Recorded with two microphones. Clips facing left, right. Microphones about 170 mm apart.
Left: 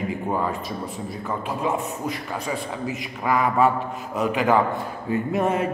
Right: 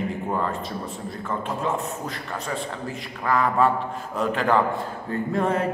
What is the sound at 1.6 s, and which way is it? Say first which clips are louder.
A man's voice: left 2 dB; 15° left (ahead or behind).